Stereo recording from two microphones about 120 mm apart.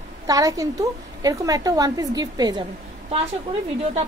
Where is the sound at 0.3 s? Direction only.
30° right (ahead or behind).